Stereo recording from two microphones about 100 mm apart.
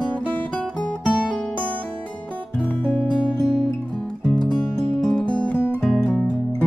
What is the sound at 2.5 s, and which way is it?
Music, 10° left (ahead or behind).